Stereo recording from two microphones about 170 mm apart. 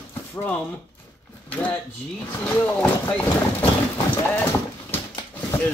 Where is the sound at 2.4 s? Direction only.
10° left (ahead or behind).